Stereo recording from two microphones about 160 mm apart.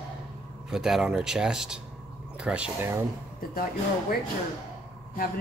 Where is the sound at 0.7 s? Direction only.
5° right (ahead or behind).